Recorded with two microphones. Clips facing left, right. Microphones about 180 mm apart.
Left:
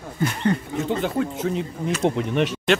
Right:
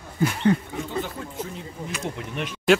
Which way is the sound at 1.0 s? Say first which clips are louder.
Left 6 dB; 90° left.